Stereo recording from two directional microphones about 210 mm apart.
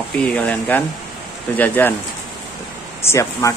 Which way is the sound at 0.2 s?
5° left (ahead or behind).